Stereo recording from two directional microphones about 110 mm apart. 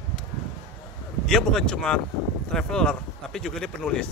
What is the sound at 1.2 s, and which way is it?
A man's voice, 5° left (ahead or behind).